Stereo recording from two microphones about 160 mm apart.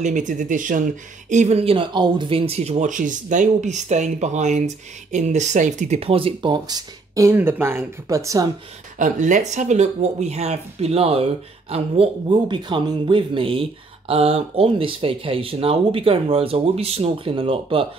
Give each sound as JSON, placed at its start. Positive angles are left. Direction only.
{"t": 0.0, "sound": "speech", "side_deg": -50}
{"t": 1.3, "sound": "speech", "side_deg": -45}
{"t": 8.9, "sound": "speech", "side_deg": -55}